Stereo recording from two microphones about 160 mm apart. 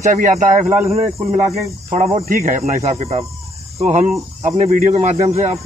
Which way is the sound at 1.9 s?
45° right (ahead or behind).